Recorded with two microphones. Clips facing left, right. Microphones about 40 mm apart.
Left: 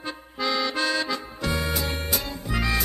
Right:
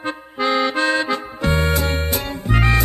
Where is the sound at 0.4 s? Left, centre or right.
Right.